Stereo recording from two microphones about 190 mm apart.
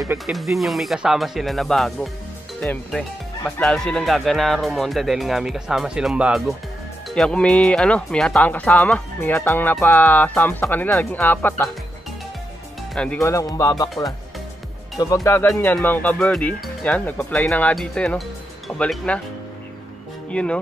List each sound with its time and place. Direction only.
0.3 s speech: centre (ahead or behind)
12.9 s speech: 5° left (ahead or behind)
13.2 s speech: 15° left (ahead or behind)
15.2 s speech: 15° left (ahead or behind)
20.2 s speech: 5° left (ahead or behind)